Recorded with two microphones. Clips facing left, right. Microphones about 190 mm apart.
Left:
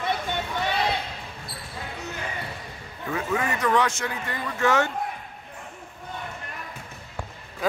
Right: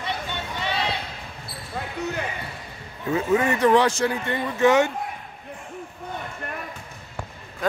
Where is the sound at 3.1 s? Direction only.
30° right (ahead or behind).